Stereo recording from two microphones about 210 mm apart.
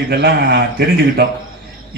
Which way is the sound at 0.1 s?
50° right (ahead or behind).